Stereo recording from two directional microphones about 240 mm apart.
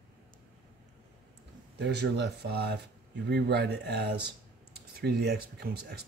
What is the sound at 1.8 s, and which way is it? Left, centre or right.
Speech, right.